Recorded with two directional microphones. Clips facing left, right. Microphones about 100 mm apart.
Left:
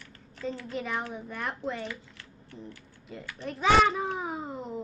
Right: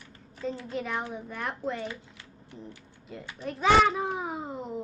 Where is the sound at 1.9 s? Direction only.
20° right (ahead or behind).